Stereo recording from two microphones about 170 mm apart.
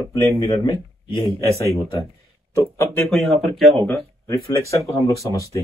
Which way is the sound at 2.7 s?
15° left (ahead or behind).